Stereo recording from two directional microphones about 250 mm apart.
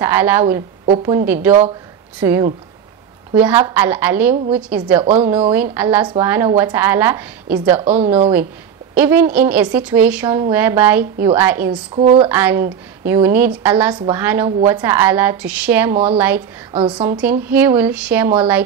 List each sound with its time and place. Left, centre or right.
0.0 s a woman's voice: centre
0.8 s a woman's voice: right
1.1 s a woman's voice: centre
5.0 s speech: right
5.5 s a woman's voice: centre
8.9 s a woman's voice: centre
11.9 s speech: right
12.3 s a woman's voice: centre
13.9 s a woman's voice: centre
14.2 s a woman's voice: centre
16.7 s speech: right
17.2 s a woman's voice: centre